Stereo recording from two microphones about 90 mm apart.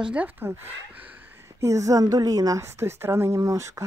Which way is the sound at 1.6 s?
35° right (ahead or behind).